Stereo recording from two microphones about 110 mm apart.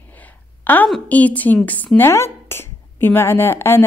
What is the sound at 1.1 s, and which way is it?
Speech, 15° left (ahead or behind).